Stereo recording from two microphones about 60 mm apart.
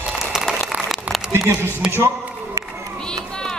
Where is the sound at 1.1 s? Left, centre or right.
Right.